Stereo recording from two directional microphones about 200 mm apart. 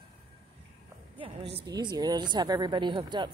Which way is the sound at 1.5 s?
20° right (ahead or behind).